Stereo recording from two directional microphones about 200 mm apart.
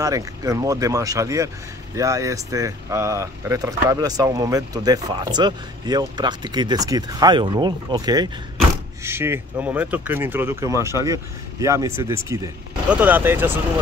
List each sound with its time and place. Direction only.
0.0 s speech: 15° right (ahead or behind)